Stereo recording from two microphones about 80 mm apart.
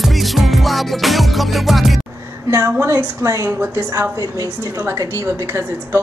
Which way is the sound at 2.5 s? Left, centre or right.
Right.